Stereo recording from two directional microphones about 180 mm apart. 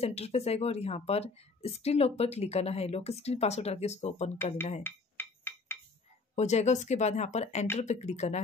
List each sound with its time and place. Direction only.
0.0 s speech: 35° left (ahead or behind)
4.8 s a sound: 10° left (ahead or behind)
6.3 s speech: 40° left (ahead or behind)